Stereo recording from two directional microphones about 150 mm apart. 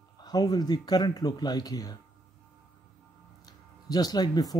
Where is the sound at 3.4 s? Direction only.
25° left (ahead or behind).